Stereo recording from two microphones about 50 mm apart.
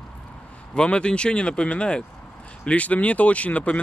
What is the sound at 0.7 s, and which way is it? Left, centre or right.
Speech, left.